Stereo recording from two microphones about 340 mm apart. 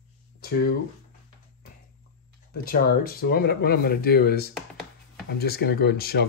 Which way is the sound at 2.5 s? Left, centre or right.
Left.